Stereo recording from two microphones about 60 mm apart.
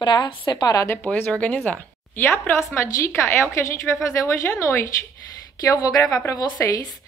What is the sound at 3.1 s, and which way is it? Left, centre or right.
Speech, left.